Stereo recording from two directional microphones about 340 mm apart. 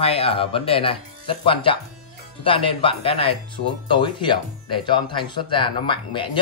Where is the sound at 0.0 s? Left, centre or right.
Centre.